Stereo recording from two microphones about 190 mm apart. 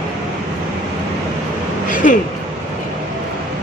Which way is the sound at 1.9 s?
45° left (ahead or behind).